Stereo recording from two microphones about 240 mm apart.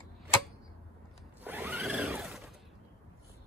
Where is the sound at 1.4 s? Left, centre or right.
Centre.